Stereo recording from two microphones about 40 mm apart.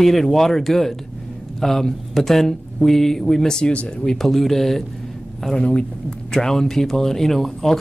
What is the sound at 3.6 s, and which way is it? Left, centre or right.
Speech, left.